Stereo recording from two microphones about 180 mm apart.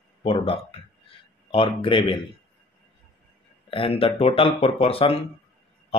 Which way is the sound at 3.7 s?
30° left (ahead or behind).